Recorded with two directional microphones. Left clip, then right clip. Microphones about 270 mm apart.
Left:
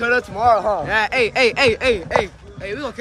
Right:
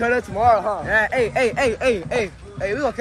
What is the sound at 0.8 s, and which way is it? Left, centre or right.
Speech, centre.